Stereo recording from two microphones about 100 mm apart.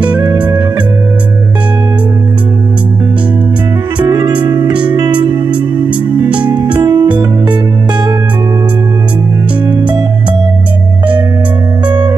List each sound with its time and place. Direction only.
4.0 s music: 45° right (ahead or behind)
6.4 s music: 50° right (ahead or behind)
9.7 s music: 45° right (ahead or behind)